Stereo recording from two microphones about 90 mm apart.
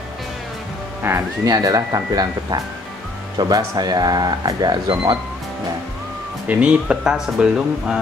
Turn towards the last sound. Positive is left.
turn(degrees=-10)  # may be behind; listen again after turning